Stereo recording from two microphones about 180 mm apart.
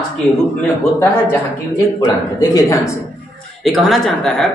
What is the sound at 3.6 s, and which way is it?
Speech, centre (ahead or behind).